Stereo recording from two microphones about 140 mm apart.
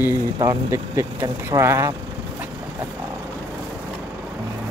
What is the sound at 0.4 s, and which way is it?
Speech, 25° right (ahead or behind).